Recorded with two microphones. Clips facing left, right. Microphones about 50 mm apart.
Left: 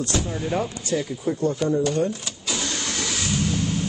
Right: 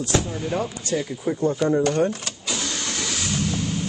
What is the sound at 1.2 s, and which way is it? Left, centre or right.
Speech, right.